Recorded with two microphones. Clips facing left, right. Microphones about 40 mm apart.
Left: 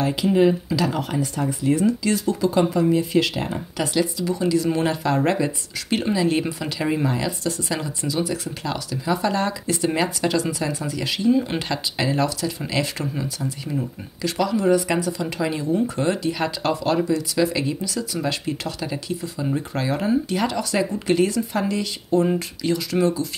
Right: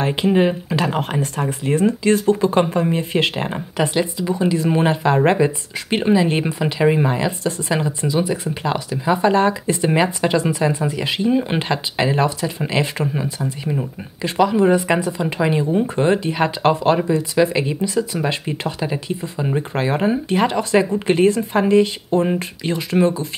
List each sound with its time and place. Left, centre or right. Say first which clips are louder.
0.0 s speech: right 1 dB; right